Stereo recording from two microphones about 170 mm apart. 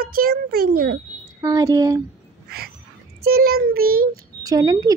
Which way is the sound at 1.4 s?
20° right (ahead or behind).